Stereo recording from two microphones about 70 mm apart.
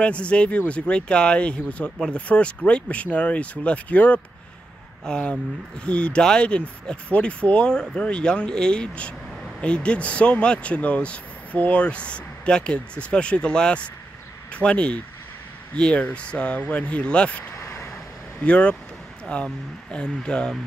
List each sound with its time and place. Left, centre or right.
0.0 s speech: centre